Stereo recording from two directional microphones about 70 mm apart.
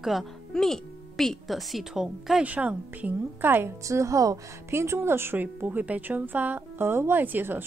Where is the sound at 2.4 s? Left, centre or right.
Centre.